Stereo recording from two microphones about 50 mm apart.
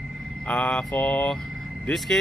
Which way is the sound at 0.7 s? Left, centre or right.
Centre.